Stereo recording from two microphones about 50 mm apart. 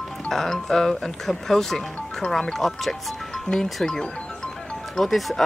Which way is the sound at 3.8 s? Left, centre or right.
Centre.